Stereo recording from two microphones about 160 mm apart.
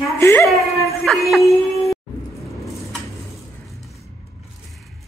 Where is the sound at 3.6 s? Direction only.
Centre (ahead or behind).